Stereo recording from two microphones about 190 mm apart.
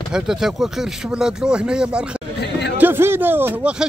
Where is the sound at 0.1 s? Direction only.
5° right (ahead or behind).